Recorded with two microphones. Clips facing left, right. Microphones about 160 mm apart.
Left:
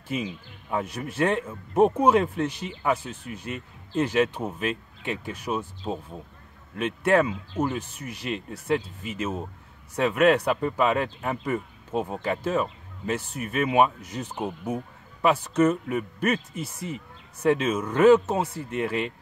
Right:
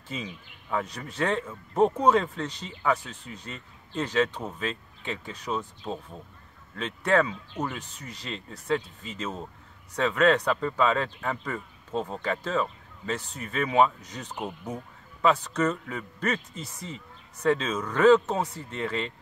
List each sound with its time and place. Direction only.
0.1 s speech: 15° left (ahead or behind)
15.5 s speech: 15° left (ahead or behind)